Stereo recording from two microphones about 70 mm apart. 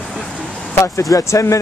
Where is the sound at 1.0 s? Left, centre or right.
Left.